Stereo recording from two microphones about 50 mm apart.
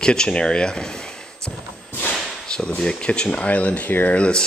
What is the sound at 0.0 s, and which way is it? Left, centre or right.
Speech, centre.